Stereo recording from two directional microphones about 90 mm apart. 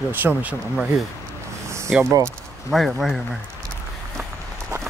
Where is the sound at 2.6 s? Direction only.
Centre (ahead or behind).